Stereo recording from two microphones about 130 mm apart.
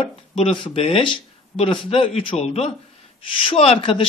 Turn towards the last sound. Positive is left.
turn(degrees=45)  # may be behind; listen again after turning